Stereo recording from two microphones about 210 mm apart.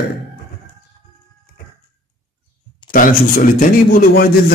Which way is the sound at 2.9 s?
40° left (ahead or behind).